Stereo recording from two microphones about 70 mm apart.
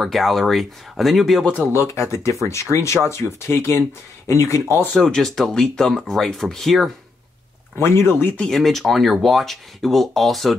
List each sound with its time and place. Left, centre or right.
0.0 s speech: centre
1.4 s speech: left
1.7 s speech: left
4.9 s speech: centre
7.8 s speech: left
8.5 s speech: centre